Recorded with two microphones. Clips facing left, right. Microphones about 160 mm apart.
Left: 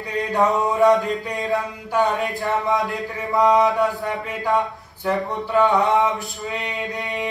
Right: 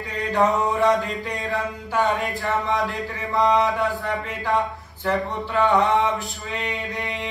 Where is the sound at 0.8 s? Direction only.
Centre (ahead or behind).